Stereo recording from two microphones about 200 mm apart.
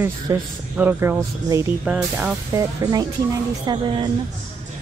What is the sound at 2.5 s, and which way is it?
A woman's voice, 20° right (ahead or behind).